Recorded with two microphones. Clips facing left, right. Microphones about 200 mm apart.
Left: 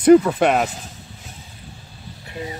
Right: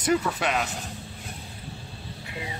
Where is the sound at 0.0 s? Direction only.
55° left (ahead or behind).